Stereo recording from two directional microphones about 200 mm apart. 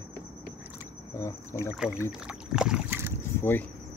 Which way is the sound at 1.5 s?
5° right (ahead or behind).